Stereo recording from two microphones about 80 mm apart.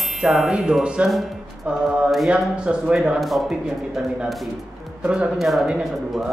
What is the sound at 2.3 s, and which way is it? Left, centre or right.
Speech, centre.